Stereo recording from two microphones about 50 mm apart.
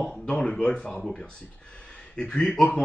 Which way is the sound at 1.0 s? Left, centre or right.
Centre.